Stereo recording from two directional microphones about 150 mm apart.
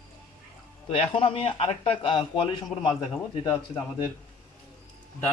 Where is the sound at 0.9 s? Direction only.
40° left (ahead or behind).